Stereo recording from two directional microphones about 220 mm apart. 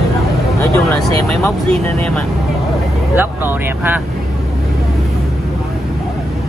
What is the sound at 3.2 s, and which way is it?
Speech, 10° right (ahead or behind).